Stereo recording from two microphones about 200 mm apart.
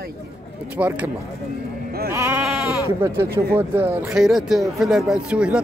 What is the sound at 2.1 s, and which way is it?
Sheep, 10° right (ahead or behind).